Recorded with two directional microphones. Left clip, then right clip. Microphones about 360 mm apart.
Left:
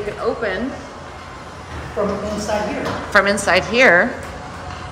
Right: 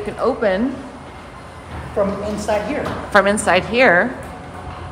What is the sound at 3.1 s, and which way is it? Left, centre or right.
Speech, centre.